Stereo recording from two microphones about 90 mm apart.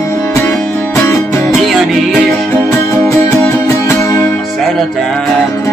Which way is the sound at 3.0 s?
30° left (ahead or behind).